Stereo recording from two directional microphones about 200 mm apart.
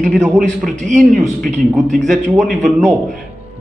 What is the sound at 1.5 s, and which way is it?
Speech, centre (ahead or behind).